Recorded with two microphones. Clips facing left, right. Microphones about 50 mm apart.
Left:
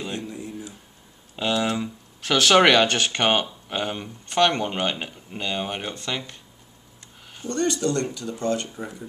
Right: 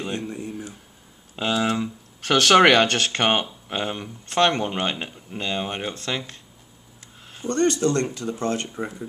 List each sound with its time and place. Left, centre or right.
0.3 s a sound: right
1.3 s speech: centre
2.5 s speech: centre
2.9 s speech: centre
7.4 s speech: right